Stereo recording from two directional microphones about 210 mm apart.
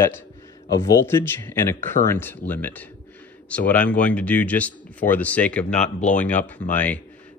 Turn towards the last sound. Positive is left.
turn(degrees=5)  # may be behind; listen again after turning